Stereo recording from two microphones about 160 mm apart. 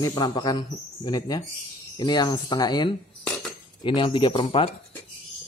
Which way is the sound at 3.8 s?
30° left (ahead or behind).